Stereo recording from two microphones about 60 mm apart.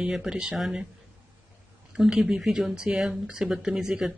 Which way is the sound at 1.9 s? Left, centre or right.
Centre.